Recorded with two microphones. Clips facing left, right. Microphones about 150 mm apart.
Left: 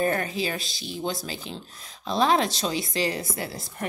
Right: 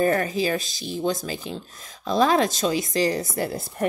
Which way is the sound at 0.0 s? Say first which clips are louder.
Right 4 dB; 40° right (ahead or behind).